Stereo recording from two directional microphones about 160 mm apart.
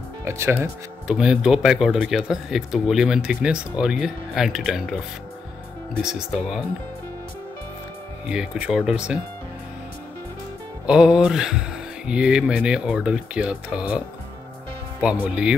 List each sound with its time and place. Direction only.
0.2 s speech: 15° right (ahead or behind)
1.0 s speech: 5° right (ahead or behind)
6.0 s speech: 5° right (ahead or behind)
8.3 s speech: 5° right (ahead or behind)
10.9 s speech: 5° right (ahead or behind)